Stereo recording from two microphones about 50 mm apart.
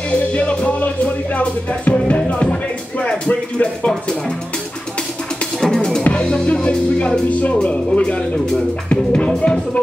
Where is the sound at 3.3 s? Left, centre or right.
Left.